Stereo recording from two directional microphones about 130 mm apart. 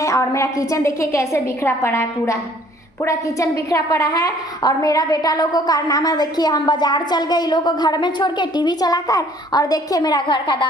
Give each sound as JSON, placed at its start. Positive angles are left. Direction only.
{"t": 0.0, "sound": "a woman's voice", "side_deg": 25}